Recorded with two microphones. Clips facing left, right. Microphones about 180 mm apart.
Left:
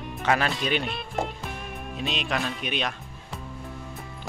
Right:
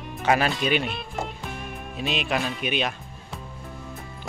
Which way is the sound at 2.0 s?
5° right (ahead or behind).